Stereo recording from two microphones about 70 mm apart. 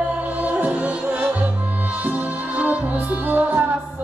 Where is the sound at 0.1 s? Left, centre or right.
Right.